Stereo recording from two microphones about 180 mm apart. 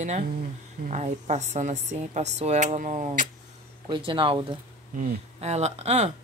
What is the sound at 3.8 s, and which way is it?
Speech, 25° right (ahead or behind).